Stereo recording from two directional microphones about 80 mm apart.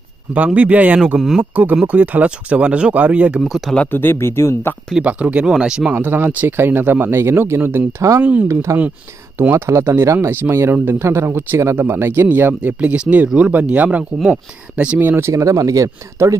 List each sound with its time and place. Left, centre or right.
0.5 s speech: centre
3.4 s speech: centre
3.9 s speech: left
4.9 s speech: centre
5.9 s speech: right
8.2 s speech: centre
8.7 s speech: right
12.7 s speech: centre
15.0 s speech: right
15.3 s speech: right